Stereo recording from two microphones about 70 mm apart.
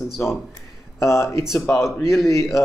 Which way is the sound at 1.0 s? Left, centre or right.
Left.